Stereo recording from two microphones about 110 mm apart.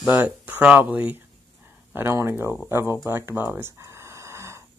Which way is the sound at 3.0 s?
20° right (ahead or behind).